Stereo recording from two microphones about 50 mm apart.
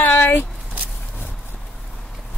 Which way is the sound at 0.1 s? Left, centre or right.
Left.